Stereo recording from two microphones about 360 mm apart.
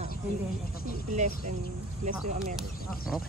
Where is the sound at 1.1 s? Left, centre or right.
Centre.